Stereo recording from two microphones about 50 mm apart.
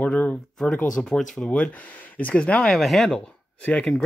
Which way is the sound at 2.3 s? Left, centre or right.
Left.